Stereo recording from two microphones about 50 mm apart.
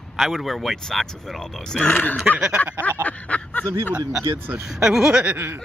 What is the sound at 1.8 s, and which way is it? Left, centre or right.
Speech, left.